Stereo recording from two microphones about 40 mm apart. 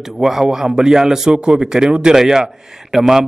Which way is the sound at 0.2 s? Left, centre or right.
Centre.